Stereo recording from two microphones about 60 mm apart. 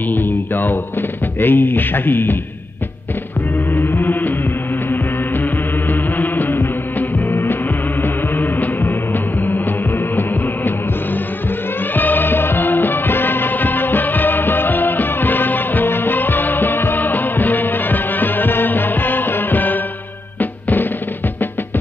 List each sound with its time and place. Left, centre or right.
0.1 s music: left
1.4 s speech: left
3.7 s music: left
11.9 s music: left